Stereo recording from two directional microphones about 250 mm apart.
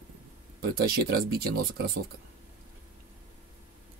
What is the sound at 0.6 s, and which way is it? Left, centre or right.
Speech, right.